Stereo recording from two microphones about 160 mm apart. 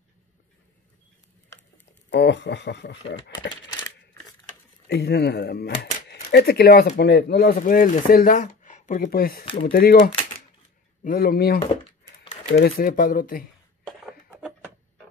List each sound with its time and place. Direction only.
2.1 s speech: 90° left
4.8 s speech: 90° left
7.0 s speech: 90° left; by 13.5 s 60° left (ahead or behind)
13.8 s a sound: centre (ahead or behind)